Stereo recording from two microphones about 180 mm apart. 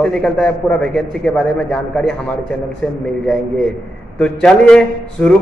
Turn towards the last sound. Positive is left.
turn(degrees=5)  # may be behind; listen again after turning